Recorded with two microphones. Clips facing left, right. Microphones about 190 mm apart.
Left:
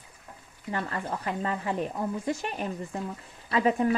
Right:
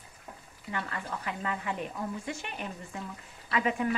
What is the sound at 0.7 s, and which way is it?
Speech, 35° left (ahead or behind).